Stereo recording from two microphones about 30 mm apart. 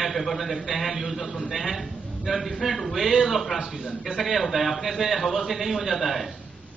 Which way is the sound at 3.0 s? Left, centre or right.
Centre.